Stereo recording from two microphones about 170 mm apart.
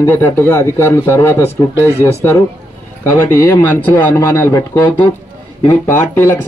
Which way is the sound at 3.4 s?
15° left (ahead or behind).